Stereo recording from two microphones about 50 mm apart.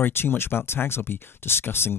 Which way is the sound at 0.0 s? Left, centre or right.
Left.